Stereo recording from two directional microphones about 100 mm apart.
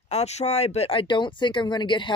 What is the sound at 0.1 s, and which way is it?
Speech, 90° left.